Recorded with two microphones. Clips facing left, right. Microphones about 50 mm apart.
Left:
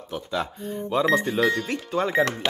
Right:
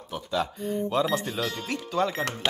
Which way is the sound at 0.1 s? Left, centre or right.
Centre.